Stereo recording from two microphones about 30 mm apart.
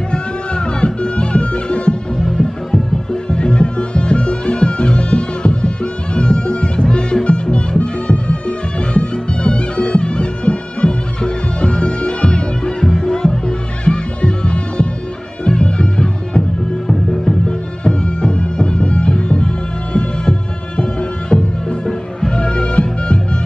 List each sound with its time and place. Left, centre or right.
0.1 s music: left
2.3 s music: left
12.9 s music: centre
16.8 s music: centre
17.5 s music: left